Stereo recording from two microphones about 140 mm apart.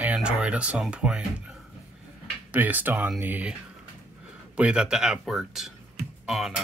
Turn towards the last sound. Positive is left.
turn(degrees=0)  # may be behind; listen again after turning